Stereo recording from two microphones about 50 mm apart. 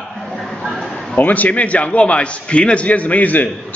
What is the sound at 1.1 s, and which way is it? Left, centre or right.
A man's voice, left.